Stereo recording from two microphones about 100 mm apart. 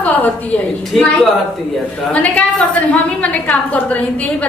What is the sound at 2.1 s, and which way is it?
A woman's voice, 15° left (ahead or behind).